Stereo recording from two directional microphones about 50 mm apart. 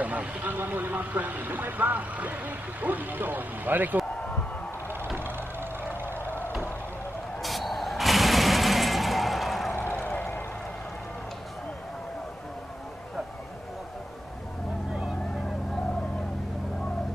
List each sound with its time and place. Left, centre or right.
0.0 s speech: right
7.4 s music: centre
10.1 s a sound: left